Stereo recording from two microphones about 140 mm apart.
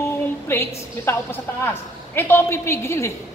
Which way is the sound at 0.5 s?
15° left (ahead or behind).